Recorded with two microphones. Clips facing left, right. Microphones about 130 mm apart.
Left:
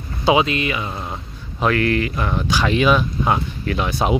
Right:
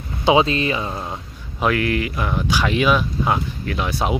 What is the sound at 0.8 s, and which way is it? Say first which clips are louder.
Speech: right 1 dB; 15° right (ahead or behind).